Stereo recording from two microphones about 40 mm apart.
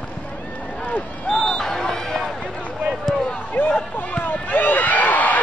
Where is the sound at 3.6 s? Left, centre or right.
Left.